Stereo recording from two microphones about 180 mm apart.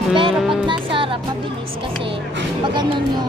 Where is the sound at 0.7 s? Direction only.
30° right (ahead or behind).